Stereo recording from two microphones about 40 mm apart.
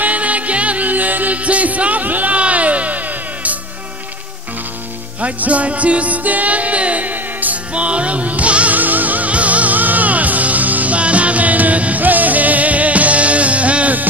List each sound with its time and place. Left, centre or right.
0.0 s music: right
5.2 s music: right
7.7 s music: right
8.7 s music: right